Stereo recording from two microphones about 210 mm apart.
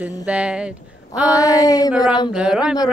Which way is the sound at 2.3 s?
5° right (ahead or behind).